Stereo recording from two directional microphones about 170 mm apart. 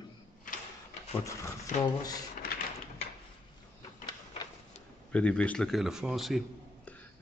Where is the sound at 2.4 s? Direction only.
65° left (ahead or behind).